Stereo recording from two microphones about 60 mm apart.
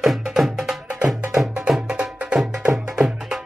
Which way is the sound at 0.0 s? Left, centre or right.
Centre.